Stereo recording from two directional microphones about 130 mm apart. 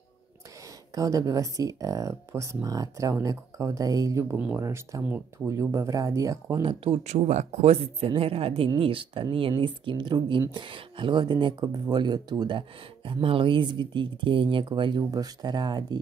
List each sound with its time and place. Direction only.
0.9 s speech: 25° right (ahead or behind)
6.6 s speech: 45° right (ahead or behind)
7.0 s speech: 60° right (ahead or behind); by 16.0 s 35° right (ahead or behind)